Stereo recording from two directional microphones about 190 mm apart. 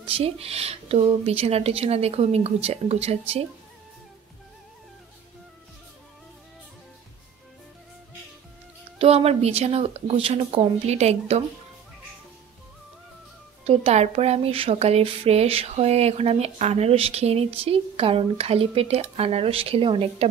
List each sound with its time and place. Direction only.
0.0 s speech: 30° right (ahead or behind)
8.9 s speech: 30° right (ahead or behind)
13.7 s speech: 35° right (ahead or behind)